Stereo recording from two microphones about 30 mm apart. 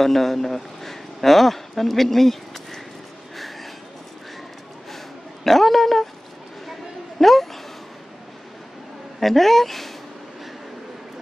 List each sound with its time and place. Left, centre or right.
0.0 s speech: centre
4.9 s a sound: centre
9.2 s speech: centre